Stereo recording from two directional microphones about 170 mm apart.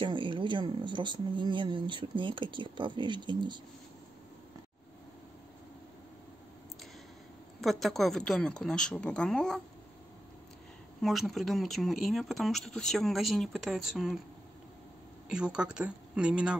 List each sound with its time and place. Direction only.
0.0 s speech: 30° right (ahead or behind)
7.6 s speech: centre (ahead or behind)
11.0 s speech: centre (ahead or behind)
15.3 s speech: 5° right (ahead or behind)